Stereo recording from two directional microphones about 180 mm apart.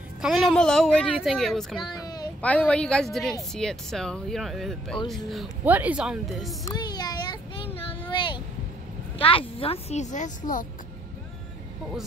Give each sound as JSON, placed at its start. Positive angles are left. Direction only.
{"t": 0.2, "sound": "a woman's voice", "side_deg": 0}
{"t": 1.8, "sound": "a sound", "side_deg": 20}
{"t": 2.4, "sound": "a woman's voice", "side_deg": 10}
{"t": 6.7, "sound": "child singing", "side_deg": 20}
{"t": 8.1, "sound": "a sound", "side_deg": 25}
{"t": 9.2, "sound": "a child's voice", "side_deg": 30}